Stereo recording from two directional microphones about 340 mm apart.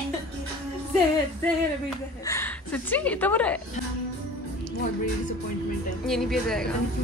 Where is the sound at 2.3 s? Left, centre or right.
Centre.